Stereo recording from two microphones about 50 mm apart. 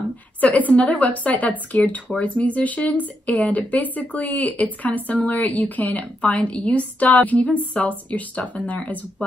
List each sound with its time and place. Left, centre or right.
0.4 s a woman's voice: left